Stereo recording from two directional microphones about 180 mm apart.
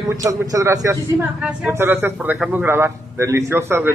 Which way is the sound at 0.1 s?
15° right (ahead or behind).